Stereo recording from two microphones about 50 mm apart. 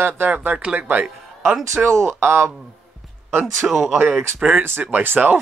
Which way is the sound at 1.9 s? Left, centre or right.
Right.